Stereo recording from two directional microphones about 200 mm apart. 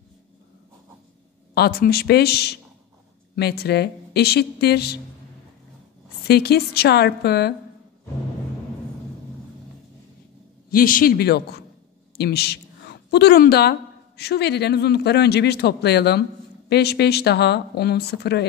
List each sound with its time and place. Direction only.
1.5 s a woman's voice: 50° left (ahead or behind)
6.2 s a woman's voice: 55° left (ahead or behind)
10.7 s a woman's voice: 45° left (ahead or behind)